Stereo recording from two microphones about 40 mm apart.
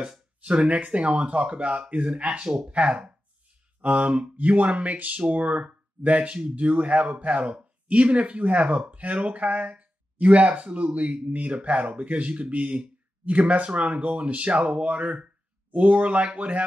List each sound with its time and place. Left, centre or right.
0.4 s speech: right